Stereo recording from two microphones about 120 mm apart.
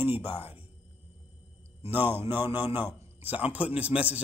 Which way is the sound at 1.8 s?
15° right (ahead or behind).